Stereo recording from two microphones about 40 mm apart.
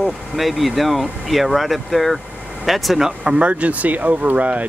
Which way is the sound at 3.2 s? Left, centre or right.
Right.